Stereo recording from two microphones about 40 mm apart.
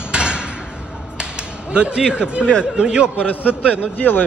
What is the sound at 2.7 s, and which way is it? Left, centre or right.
Speech, right.